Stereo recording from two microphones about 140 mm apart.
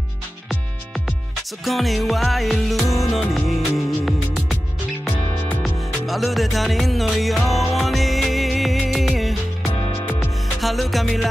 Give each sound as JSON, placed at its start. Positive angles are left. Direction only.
{"t": 1.6, "sound": "music", "side_deg": 0}
{"t": 5.6, "sound": "music", "side_deg": 0}